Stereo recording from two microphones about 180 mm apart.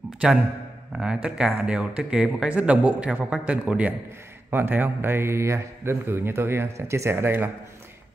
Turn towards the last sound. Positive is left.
turn(degrees=-10)  # may be behind; listen again after turning